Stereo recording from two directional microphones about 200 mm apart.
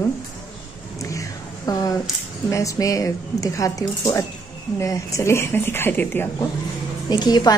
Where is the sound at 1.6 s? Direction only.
20° left (ahead or behind).